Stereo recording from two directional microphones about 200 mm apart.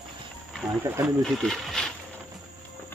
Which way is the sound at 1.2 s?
Centre (ahead or behind).